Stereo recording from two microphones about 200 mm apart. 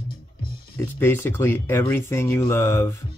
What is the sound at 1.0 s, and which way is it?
Speech, 10° left (ahead or behind).